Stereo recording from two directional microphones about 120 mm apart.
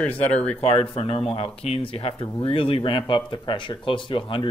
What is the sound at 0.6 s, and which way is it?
Speech, 55° left (ahead or behind).